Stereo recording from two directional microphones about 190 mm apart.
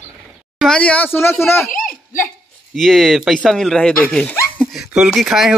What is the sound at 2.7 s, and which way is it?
Speech, centre (ahead or behind).